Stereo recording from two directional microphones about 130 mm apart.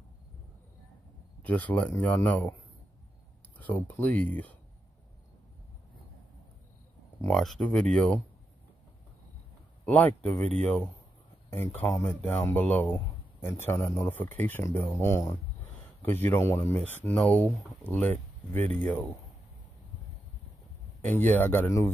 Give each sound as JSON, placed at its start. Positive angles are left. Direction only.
{"t": 1.4, "sound": "speech", "side_deg": 10}
{"t": 3.5, "sound": "speech", "side_deg": 15}
{"t": 7.2, "sound": "speech", "side_deg": 5}
{"t": 9.8, "sound": "speech", "side_deg": 15}
{"t": 11.8, "sound": "speech", "side_deg": 20}
{"t": 21.1, "sound": "speech", "side_deg": 15}